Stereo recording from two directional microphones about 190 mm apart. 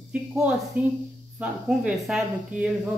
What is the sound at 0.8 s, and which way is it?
Speech, 10° right (ahead or behind).